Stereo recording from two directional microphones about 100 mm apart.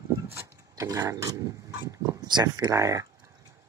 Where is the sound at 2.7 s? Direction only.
35° right (ahead or behind).